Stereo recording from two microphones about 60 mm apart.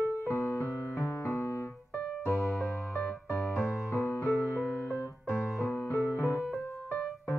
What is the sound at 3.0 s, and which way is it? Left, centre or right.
Music, left.